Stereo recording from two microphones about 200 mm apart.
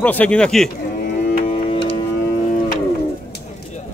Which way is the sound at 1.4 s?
30° left (ahead or behind).